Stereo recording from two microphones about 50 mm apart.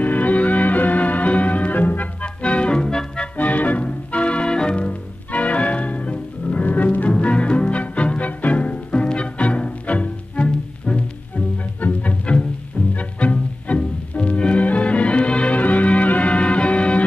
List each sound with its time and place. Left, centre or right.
0.0 s music: left
2.2 s music: left
3.3 s music: left